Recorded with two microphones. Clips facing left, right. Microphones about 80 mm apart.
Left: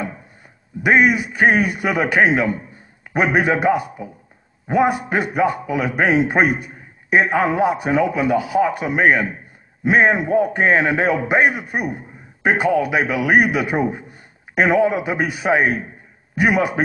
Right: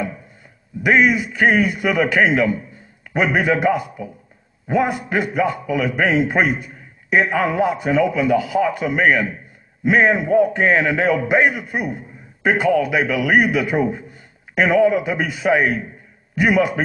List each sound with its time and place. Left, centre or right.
0.8 s a man's voice: left